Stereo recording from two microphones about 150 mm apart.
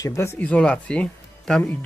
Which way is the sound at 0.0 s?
20° left (ahead or behind).